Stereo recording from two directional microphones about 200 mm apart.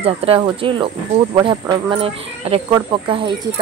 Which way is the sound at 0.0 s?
30° right (ahead or behind).